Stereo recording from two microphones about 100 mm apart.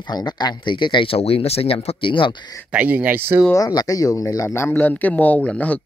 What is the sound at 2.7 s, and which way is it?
Speech, 15° right (ahead or behind).